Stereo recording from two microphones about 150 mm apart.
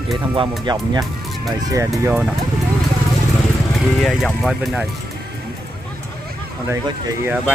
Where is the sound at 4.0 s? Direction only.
Centre (ahead or behind).